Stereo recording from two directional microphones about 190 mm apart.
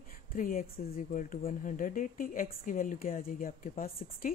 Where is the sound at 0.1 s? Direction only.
45° left (ahead or behind).